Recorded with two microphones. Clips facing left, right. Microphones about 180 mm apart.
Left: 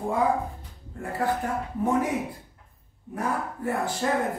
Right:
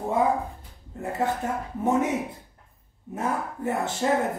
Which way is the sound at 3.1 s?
20° right (ahead or behind).